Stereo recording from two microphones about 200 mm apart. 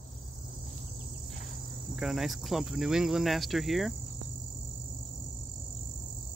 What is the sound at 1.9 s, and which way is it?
Cricket, centre (ahead or behind).